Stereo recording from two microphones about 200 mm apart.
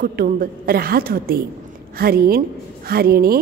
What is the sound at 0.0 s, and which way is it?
A woman's voice, 50° right (ahead or behind).